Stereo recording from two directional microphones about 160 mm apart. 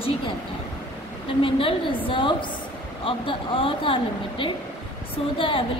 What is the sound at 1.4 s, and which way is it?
Speech, 35° left (ahead or behind).